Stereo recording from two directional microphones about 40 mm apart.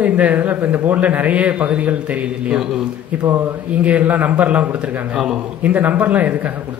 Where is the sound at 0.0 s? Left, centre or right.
Right.